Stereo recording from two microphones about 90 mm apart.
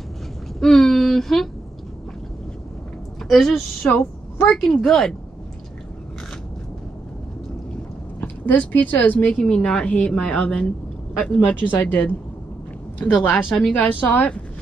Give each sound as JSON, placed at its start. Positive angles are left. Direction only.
{"t": 0.6, "sound": "a sound", "side_deg": 5}
{"t": 3.3, "sound": "a woman's voice", "side_deg": 0}
{"t": 4.8, "sound": "a woman's voice", "side_deg": 5}
{"t": 8.2, "sound": "a woman's voice", "side_deg": 20}
{"t": 9.4, "sound": "a woman's voice", "side_deg": 5}
{"t": 13.2, "sound": "speech", "side_deg": 20}
{"t": 13.5, "sound": "a woman's voice", "side_deg": 5}
{"t": 13.7, "sound": "speech", "side_deg": 20}